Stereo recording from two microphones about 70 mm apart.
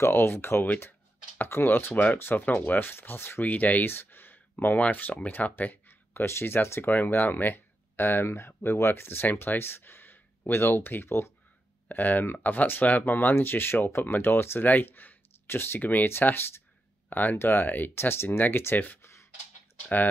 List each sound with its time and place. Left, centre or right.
0.0 s speech: left